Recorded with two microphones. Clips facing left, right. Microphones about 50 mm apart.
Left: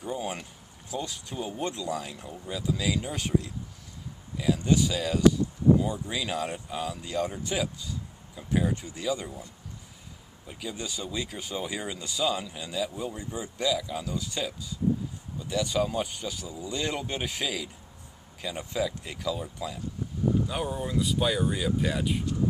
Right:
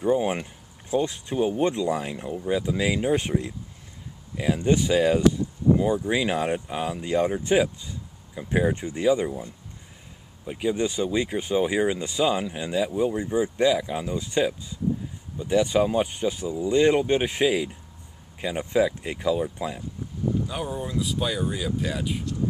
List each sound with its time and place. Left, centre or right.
0.0 s speech: right
20.4 s speech: centre